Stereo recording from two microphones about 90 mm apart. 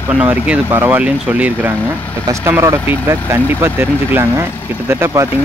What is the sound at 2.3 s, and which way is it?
Speech, 30° right (ahead or behind).